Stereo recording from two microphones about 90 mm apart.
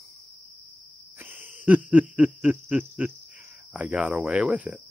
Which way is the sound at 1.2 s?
20° right (ahead or behind).